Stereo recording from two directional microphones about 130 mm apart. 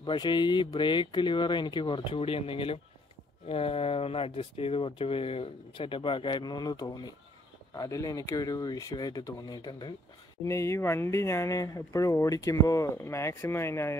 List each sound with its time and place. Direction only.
0.0 s speech: 35° left (ahead or behind)
10.4 s speech: 25° left (ahead or behind)